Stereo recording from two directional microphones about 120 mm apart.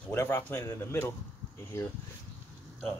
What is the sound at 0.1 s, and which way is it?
A man's voice, 15° left (ahead or behind).